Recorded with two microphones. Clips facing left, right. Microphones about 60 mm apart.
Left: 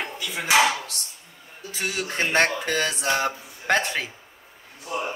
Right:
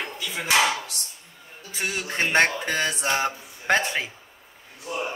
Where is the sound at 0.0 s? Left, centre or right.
Centre.